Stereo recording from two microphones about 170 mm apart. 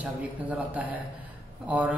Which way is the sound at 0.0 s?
10° right (ahead or behind).